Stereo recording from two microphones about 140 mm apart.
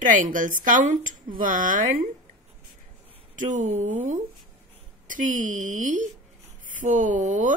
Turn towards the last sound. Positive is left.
turn(degrees=-65)  # may be behind; listen again after turning